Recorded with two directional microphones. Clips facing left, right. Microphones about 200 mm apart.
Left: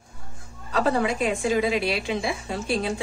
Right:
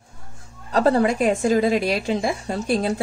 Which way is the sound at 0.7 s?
40° right (ahead or behind).